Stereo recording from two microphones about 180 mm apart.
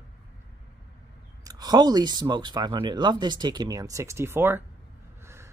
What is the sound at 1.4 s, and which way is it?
A man's voice, 20° right (ahead or behind).